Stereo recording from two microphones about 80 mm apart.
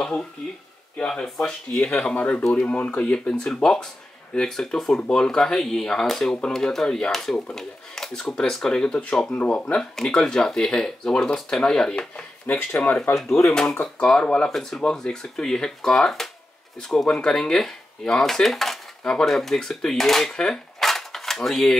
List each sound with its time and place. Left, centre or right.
0.0 s speech: centre
12.5 s speech: left
14.0 s speech: centre